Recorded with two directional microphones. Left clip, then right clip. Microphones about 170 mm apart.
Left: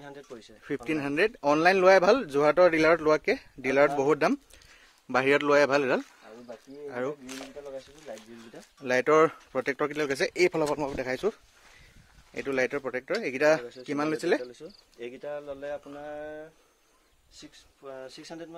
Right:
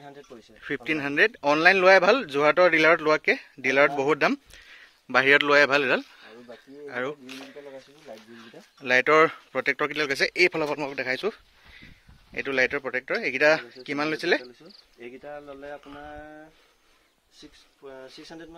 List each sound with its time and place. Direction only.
0.0 s speech: centre (ahead or behind); by 11.3 s 15° left (ahead or behind)
12.4 s speech: 5° left (ahead or behind)
14.6 s speech: 40° left (ahead or behind)
15.0 s speech: 50° left (ahead or behind)
17.8 s speech: 30° left (ahead or behind)
18.1 s speech: 40° left (ahead or behind)